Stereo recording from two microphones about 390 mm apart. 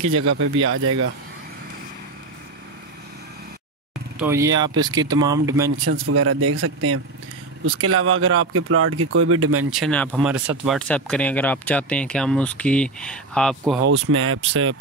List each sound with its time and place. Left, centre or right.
0.0 s speech: right
4.2 s speech: centre
5.9 s speech: right
9.7 s speech: centre
13.8 s speech: right